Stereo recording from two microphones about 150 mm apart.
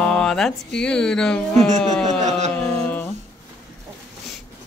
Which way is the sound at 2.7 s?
10° left (ahead or behind).